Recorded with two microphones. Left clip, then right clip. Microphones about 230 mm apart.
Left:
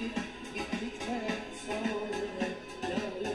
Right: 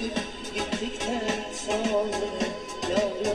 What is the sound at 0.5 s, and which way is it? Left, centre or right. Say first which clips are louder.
Music: right 7 dB; right.